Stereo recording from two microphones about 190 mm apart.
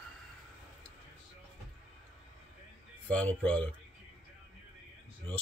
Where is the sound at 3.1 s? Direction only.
5° left (ahead or behind).